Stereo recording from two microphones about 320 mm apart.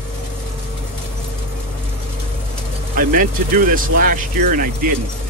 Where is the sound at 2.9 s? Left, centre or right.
Right.